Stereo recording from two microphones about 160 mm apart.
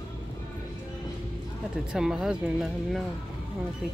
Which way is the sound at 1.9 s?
5° right (ahead or behind).